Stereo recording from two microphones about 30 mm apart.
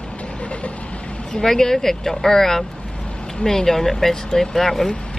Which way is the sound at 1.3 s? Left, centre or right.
Centre.